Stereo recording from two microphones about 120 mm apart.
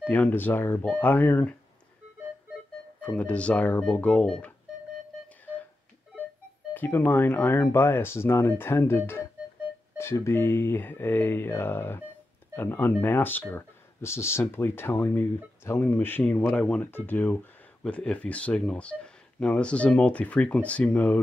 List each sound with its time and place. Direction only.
0.0 s speech: 15° left (ahead or behind)
3.0 s speech: 10° left (ahead or behind)
6.7 s speech: 15° left (ahead or behind)